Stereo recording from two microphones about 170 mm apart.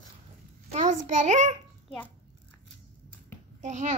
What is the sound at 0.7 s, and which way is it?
Speech, 45° right (ahead or behind).